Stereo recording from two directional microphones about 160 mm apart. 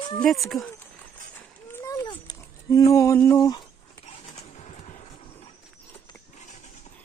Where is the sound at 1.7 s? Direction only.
15° left (ahead or behind).